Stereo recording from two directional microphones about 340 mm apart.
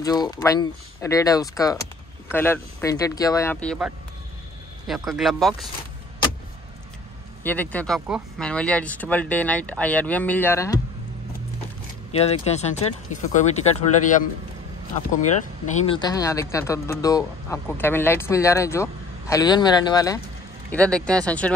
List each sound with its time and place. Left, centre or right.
0.0 s speech: centre
7.4 s speech: centre
12.1 s speech: centre
15.7 s speech: centre